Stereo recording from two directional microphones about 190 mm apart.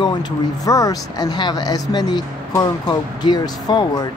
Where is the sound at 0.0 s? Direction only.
20° left (ahead or behind).